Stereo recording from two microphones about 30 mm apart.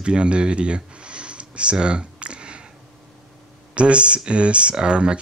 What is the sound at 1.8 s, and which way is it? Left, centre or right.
Clicking, right.